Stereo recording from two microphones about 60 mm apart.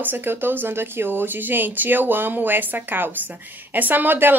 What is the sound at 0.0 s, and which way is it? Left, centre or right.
A woman's voice, right.